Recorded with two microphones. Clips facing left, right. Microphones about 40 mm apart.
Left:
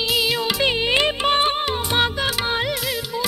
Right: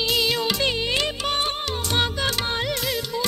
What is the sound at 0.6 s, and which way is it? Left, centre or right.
Music, left.